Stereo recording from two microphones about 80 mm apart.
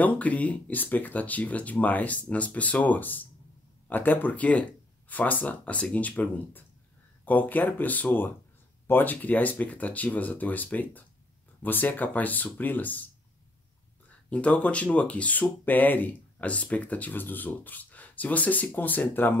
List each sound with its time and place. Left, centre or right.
0.0 s speech: centre
14.3 s speech: centre